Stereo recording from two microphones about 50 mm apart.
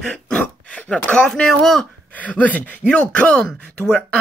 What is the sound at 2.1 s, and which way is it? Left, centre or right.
Speech, left.